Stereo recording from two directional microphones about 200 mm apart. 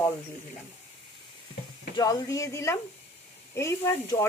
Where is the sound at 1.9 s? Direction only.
15° left (ahead or behind).